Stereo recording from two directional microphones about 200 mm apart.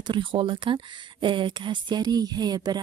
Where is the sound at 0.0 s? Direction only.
25° right (ahead or behind).